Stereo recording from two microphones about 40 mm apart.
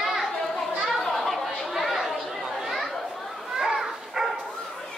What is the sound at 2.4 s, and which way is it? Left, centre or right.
Chatter, centre.